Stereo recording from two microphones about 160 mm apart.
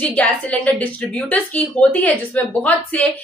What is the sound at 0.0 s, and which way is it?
A woman's voice, 10° left (ahead or behind).